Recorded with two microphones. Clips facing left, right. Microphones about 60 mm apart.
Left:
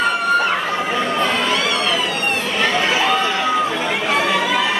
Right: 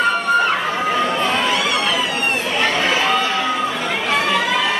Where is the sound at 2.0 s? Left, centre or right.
Centre.